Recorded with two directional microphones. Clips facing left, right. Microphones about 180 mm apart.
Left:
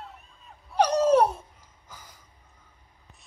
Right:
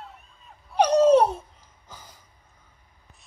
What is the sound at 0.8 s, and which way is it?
Dog, 20° right (ahead or behind).